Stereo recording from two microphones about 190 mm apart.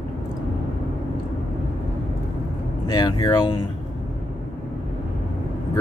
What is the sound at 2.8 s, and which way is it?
Speech, 20° left (ahead or behind).